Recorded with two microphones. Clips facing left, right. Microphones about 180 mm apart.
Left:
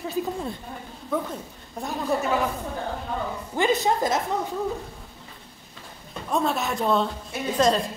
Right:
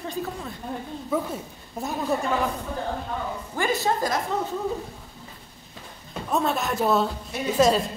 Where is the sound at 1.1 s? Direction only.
5° right (ahead or behind).